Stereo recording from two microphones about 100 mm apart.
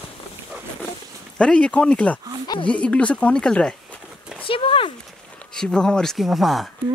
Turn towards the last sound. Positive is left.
turn(degrees=0)  # may be behind; listen again after turning